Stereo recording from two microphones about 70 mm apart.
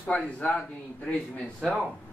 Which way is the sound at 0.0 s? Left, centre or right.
Centre.